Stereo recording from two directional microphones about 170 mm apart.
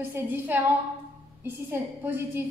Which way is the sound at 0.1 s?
10° right (ahead or behind).